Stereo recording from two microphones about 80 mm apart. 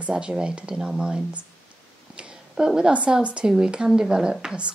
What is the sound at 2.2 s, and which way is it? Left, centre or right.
A woman's voice, centre.